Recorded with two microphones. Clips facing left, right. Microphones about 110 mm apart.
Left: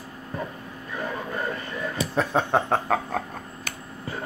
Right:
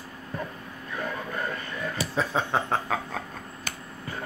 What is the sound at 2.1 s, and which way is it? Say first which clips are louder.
Speech: left 4 dB; 55° left (ahead or behind).